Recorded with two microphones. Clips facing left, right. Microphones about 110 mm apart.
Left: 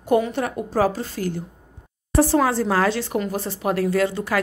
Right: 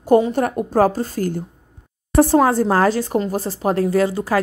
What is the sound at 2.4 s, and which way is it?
A woman's voice, 40° right (ahead or behind).